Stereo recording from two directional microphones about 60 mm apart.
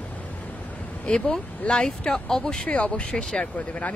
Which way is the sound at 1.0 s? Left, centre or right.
Centre.